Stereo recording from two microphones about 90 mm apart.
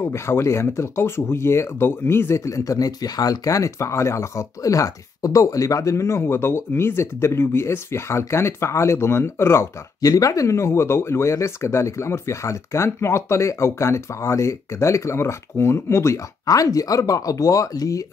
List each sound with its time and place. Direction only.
0.0 s speech: 30° left (ahead or behind)